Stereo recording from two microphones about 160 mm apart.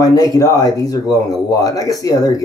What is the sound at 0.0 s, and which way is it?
Speech, 25° left (ahead or behind).